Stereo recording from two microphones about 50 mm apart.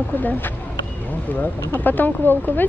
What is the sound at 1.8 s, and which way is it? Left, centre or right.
Speech, left.